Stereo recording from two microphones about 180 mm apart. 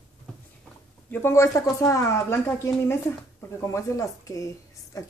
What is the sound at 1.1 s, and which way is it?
A woman's voice, 15° left (ahead or behind).